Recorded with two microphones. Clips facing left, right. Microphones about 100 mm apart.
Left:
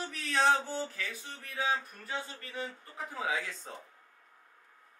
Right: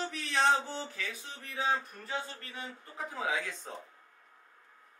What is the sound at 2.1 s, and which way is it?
Speech, 25° right (ahead or behind).